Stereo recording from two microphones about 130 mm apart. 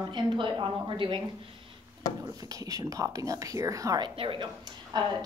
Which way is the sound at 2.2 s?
25° right (ahead or behind).